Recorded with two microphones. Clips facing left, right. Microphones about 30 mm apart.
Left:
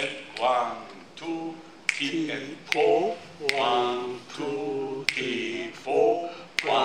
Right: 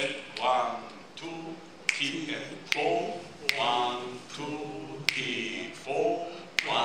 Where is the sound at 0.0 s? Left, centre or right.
Centre.